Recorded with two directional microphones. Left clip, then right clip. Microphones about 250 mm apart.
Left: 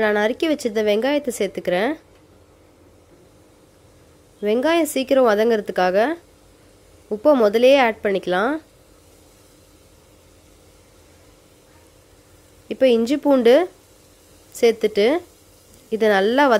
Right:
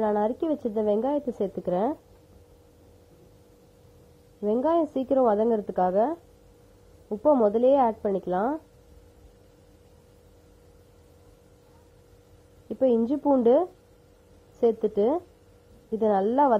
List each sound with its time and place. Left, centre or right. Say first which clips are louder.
0.0 s speech: left 6 dB; left
4.4 s speech: left 5 dB; left
12.6 s speech: left 7 dB; left